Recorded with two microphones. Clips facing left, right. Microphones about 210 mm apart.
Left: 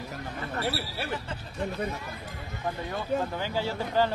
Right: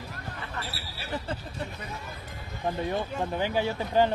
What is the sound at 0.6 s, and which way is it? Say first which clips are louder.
Speech: left 8 dB; 60° left (ahead or behind).